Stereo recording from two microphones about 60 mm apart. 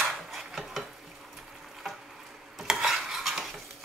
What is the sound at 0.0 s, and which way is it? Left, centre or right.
Dishes, centre.